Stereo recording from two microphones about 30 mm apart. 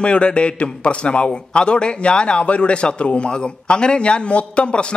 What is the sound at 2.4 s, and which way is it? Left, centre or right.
Speech, left.